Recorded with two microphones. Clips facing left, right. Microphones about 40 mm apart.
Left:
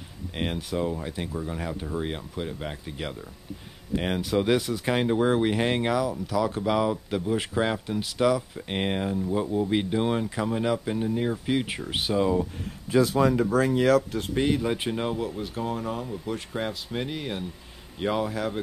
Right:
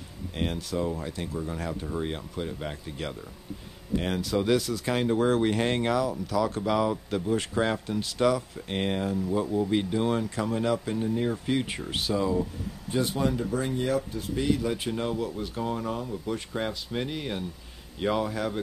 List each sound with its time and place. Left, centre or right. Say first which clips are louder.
0.3 s speech: left 1 dB; left; by 8.6 s centre
8.6 s speech: left 1 dB; centre
12.0 s speech: left 3 dB; left
13.5 s speech: left 7 dB; left
14.3 s speech: left 2 dB; left
15.2 s speech: left 1 dB; centre